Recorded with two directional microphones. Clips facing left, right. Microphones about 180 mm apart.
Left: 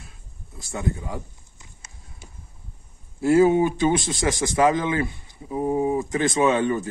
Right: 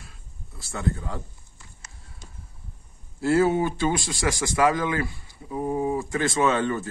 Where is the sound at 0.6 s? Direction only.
15° left (ahead or behind).